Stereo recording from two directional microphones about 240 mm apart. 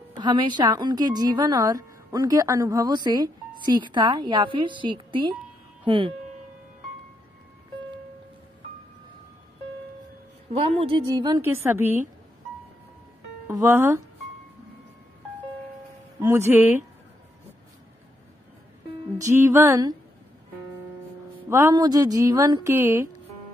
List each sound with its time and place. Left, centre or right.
0.1 s a woman's voice: centre
10.5 s a woman's voice: right; by 12.1 s centre
13.5 s a woman's voice: centre
16.2 s a woman's voice: centre
19.1 s a woman's voice: centre
21.5 s a woman's voice: centre